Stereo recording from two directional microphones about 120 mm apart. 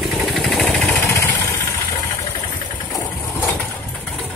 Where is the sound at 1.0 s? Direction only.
20° left (ahead or behind).